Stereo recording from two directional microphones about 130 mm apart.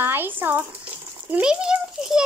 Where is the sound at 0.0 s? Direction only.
15° right (ahead or behind).